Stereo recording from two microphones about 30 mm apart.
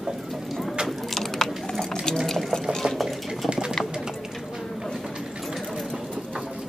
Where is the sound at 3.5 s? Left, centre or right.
Right.